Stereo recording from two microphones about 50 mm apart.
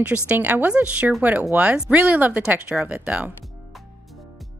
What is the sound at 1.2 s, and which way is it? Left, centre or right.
Speech, right.